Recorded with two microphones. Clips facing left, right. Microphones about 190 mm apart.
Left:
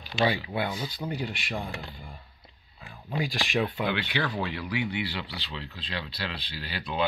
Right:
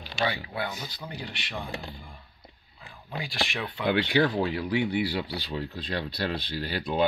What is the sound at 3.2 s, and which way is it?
Speech, 40° left (ahead or behind).